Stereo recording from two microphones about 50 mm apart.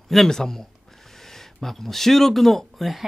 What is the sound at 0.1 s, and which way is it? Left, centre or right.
Speech, centre.